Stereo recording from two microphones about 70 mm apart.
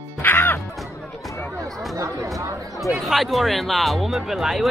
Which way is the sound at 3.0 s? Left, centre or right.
Centre.